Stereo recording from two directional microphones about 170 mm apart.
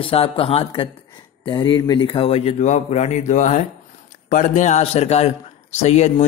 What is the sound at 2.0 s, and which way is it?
Mantra, 35° left (ahead or behind).